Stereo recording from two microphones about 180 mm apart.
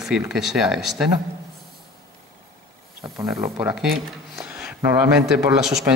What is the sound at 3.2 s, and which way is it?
Speech, 15° right (ahead or behind).